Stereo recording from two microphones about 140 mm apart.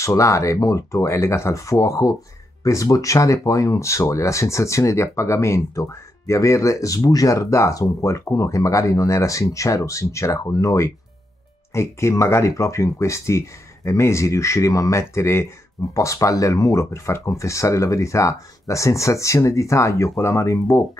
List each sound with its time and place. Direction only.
0.0 s speech: 20° left (ahead or behind)